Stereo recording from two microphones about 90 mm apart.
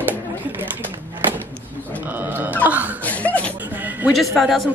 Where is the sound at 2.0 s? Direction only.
20° right (ahead or behind).